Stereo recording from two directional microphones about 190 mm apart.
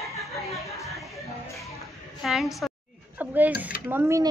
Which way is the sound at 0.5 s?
15° left (ahead or behind).